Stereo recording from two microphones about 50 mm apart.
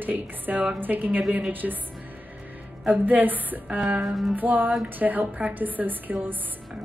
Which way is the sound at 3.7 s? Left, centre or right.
Right.